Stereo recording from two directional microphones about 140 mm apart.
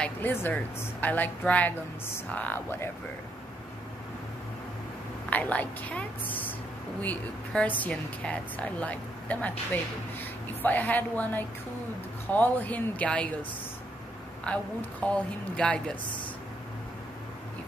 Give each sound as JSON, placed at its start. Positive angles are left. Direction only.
{"t": 0.0, "sound": "a woman's voice", "side_deg": 15}
{"t": 5.3, "sound": "a woman's voice", "side_deg": 10}